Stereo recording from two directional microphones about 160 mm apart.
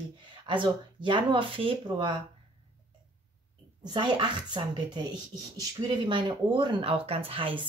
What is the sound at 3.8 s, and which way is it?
A woman's voice, 30° right (ahead or behind).